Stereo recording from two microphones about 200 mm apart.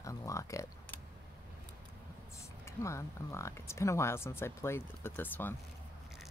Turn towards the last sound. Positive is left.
turn(degrees=10)  # may be behind; listen again after turning